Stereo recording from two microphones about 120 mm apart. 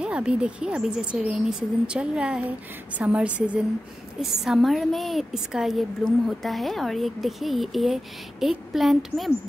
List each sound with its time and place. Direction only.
0.0 s a woman's voice: 10° right (ahead or behind)